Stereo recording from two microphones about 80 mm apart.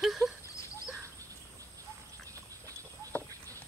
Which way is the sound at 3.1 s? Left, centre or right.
Centre.